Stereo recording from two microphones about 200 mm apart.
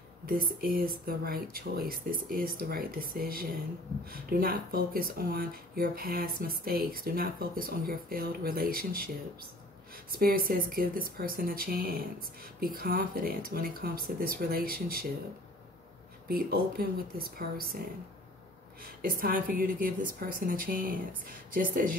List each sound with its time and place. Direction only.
0.3 s speech: 45° right (ahead or behind)
10.1 s speech: 45° right (ahead or behind)
16.3 s speech: 50° right (ahead or behind)
18.9 s speech: 45° right (ahead or behind)